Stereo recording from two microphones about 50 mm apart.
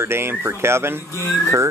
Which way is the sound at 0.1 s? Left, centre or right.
Right.